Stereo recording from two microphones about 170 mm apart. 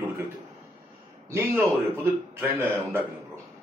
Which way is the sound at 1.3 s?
15° right (ahead or behind).